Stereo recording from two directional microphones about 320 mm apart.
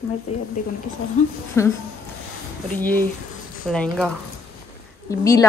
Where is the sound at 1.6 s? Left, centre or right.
Centre.